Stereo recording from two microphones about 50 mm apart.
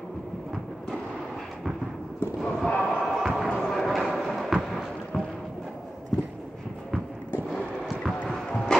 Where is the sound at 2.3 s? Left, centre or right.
Centre.